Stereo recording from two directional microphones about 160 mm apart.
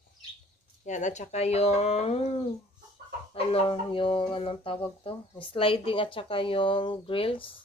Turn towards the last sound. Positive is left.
turn(degrees=35)  # may be behind; listen again after turning